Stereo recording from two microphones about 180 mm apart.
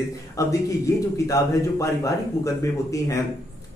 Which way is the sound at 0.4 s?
20° left (ahead or behind).